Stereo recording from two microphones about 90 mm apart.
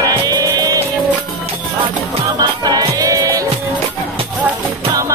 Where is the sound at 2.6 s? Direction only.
45° right (ahead or behind).